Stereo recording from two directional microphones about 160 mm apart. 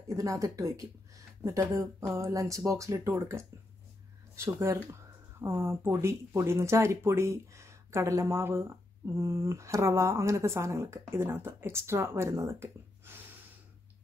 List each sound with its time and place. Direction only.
0.1 s speech: 20° right (ahead or behind)
4.6 s speech: 20° right (ahead or behind)